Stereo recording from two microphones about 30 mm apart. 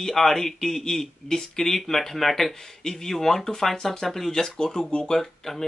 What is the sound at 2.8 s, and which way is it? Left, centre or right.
Speech, centre.